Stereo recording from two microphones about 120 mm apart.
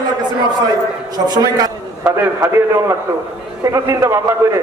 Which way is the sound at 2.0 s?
20° right (ahead or behind).